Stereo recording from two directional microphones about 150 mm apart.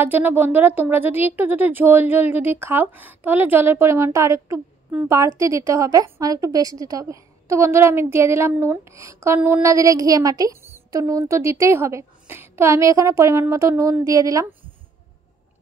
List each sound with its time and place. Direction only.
0.0 s a woman's voice: 15° right (ahead or behind)